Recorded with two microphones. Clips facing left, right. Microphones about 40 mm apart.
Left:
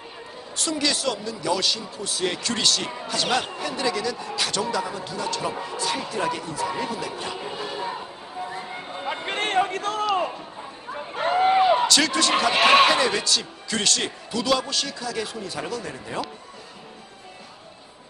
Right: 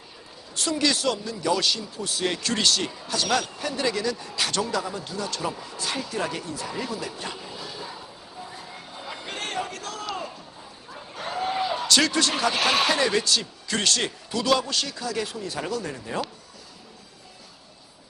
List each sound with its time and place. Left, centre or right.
0.6 s a man's voice: centre
3.1 s speech: centre
3.6 s a man's voice: centre
5.5 s speech: left
6.1 s a man's voice: centre
6.7 s speech: left
7.3 s a sound: left
11.9 s a man's voice: centre
12.5 s speech: left
12.9 s a man's voice: centre